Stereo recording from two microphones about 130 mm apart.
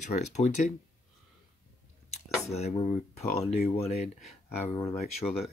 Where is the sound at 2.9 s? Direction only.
55° left (ahead or behind).